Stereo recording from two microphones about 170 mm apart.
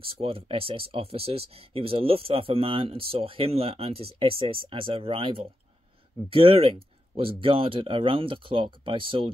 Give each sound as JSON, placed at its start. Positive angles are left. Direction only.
{"t": 0.0, "sound": "speech", "side_deg": -35}